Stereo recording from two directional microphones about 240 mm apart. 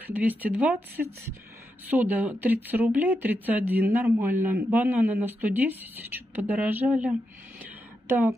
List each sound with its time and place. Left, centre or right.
0.1 s speech: centre